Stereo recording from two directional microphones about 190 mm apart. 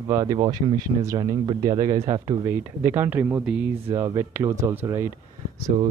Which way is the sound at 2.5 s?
10° right (ahead or behind).